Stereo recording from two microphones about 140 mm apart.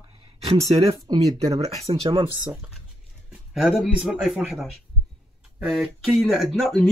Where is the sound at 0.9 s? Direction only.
25° right (ahead or behind).